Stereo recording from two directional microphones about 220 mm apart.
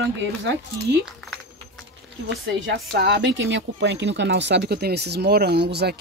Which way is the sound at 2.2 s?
55° right (ahead or behind).